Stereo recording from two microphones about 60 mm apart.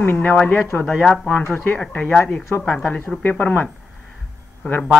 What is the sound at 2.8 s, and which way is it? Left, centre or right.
Speech, left.